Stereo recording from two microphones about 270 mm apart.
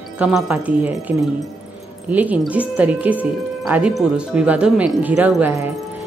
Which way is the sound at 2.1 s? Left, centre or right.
Centre.